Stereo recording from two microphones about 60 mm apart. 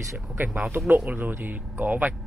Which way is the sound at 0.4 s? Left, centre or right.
Right.